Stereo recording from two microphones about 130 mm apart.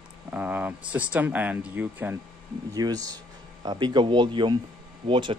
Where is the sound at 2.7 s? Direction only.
30° right (ahead or behind).